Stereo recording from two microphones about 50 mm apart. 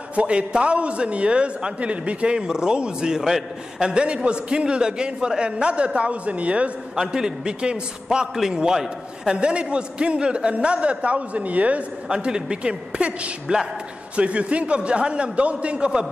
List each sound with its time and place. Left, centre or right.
0.1 s a man's voice: right; by 3.9 s centre
3.9 s a man's voice: centre
7.0 s a woman's voice: centre
9.4 s a man's voice: right
12.1 s a woman's voice: centre